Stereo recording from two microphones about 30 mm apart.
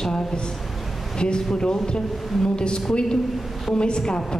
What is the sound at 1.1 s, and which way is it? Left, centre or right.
A woman's voice, left.